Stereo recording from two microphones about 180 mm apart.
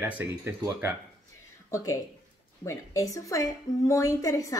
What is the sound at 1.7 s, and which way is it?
A woman's voice, 15° left (ahead or behind).